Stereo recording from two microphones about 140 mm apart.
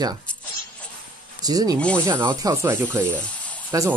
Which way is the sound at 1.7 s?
10° left (ahead or behind).